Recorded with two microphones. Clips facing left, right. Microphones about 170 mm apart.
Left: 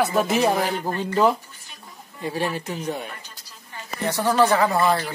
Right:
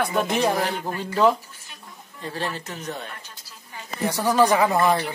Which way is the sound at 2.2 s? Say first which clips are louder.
Left 4 dB; 10° left (ahead or behind).